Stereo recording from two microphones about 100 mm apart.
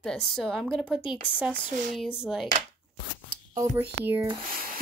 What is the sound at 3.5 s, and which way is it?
Speech, 30° right (ahead or behind).